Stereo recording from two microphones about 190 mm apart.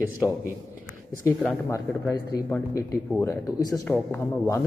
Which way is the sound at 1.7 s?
20° left (ahead or behind).